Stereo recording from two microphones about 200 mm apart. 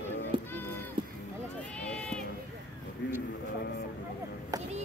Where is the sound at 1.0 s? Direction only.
25° right (ahead or behind).